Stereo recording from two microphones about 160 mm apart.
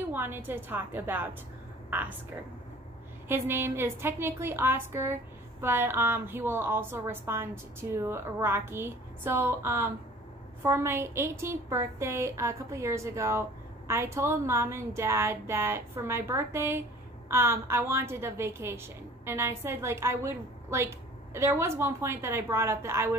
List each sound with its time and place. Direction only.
0.0 s a woman's voice: 15° right (ahead or behind)
3.3 s a woman's voice: 15° right (ahead or behind)